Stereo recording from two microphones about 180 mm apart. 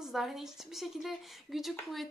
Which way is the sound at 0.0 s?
Centre (ahead or behind).